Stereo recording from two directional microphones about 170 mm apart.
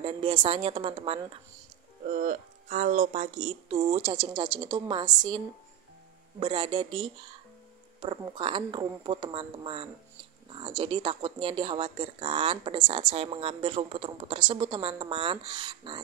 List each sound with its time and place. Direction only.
0.0 s speech: 30° right (ahead or behind)
2.1 s speech: 45° right (ahead or behind); by 5.4 s 25° right (ahead or behind)
6.4 s speech: 30° right (ahead or behind)